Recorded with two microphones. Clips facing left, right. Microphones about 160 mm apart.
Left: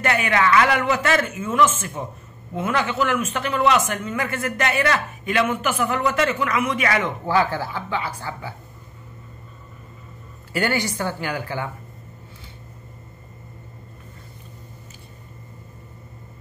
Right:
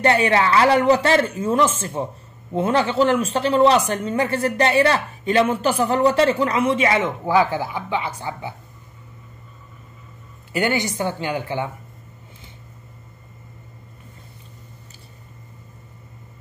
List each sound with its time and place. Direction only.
0.0 s a man's voice: 30° right (ahead or behind)
10.5 s a woman's voice: 20° right (ahead or behind)